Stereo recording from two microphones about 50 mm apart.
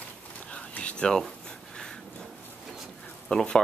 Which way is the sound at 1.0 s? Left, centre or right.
Centre.